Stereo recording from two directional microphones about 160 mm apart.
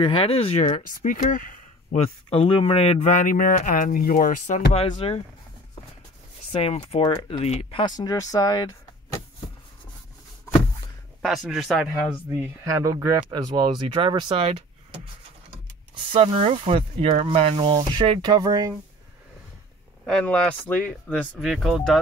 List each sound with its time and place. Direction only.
0.0 s speech: 35° left (ahead or behind)
0.7 s speech: 55° left (ahead or behind)
2.0 s speech: 40° left (ahead or behind)
4.8 s speech: 35° left (ahead or behind)
6.5 s speech: 40° left (ahead or behind)
8.0 s speech: 25° left (ahead or behind)
11.2 s speech: centre (ahead or behind)
12.3 s speech: 20° right (ahead or behind)
16.1 s speech: 35° right (ahead or behind)
20.1 s speech: 5° left (ahead or behind)